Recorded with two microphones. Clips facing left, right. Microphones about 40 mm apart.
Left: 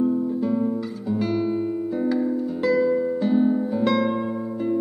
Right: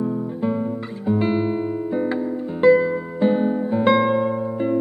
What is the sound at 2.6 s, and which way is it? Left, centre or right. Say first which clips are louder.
Music: right 5 dB; right.